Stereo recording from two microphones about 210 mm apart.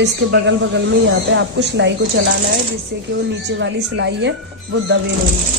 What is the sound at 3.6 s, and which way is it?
Speech, 60° right (ahead or behind).